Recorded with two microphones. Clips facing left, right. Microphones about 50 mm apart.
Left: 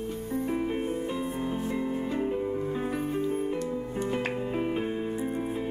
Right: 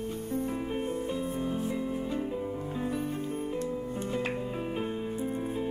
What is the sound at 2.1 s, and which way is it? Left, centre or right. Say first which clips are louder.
Music: left 4 dB; left.